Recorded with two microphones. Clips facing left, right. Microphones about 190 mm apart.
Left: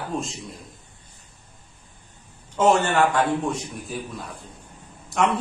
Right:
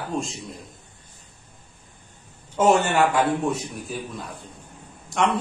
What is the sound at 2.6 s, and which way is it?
A man's voice, 10° right (ahead or behind).